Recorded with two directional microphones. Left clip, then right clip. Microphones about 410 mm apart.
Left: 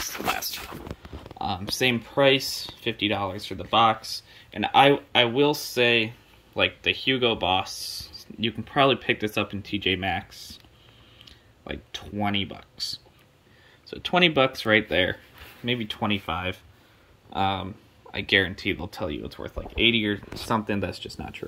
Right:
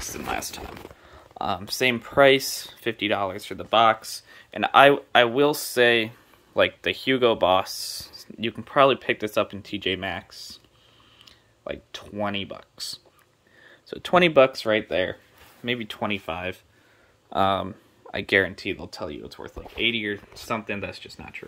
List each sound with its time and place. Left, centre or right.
1.4 s speech: centre
17.3 s speech: centre